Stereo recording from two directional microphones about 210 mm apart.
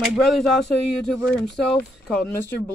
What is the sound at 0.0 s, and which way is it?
A woman's voice, centre (ahead or behind).